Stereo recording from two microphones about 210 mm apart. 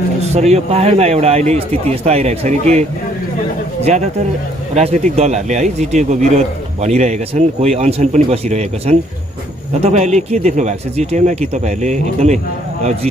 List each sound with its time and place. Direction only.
0.2 s a man's voice: 30° right (ahead or behind)
4.7 s a man's voice: 30° right (ahead or behind)